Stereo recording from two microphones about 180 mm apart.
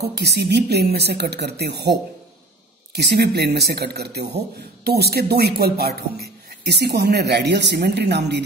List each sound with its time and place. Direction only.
0.0 s a woman's voice: 65° right (ahead or behind)